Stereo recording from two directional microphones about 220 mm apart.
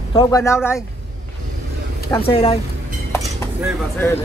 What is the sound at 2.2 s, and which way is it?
Speech, 25° left (ahead or behind).